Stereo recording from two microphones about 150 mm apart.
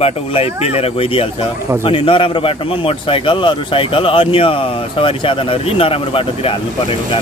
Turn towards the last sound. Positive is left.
turn(degrees=35)  # may be behind; listen again after turning